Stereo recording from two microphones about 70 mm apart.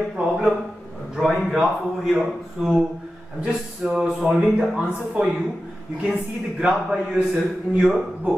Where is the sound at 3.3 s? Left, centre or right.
Centre.